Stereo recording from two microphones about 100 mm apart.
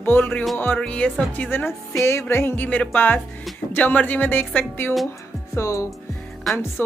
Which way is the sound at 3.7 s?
15° left (ahead or behind).